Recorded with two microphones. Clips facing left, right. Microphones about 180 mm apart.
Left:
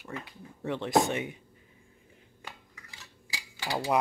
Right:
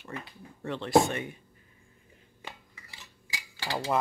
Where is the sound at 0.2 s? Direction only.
15° left (ahead or behind).